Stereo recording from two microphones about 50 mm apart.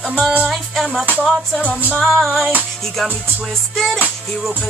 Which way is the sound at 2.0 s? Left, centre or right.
Centre.